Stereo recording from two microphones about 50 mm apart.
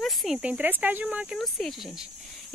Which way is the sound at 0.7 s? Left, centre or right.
Right.